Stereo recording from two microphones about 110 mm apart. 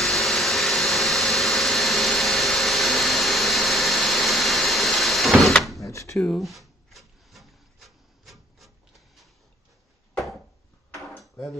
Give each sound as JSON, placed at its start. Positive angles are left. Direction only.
{"t": 0.0, "sound": "vacuum cleaner", "side_deg": 0}
{"t": 5.8, "sound": "drawer open or close", "side_deg": 30}
{"t": 6.1, "sound": "rub", "side_deg": 5}